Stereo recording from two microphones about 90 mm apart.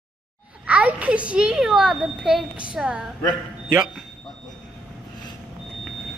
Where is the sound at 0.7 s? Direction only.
15° right (ahead or behind).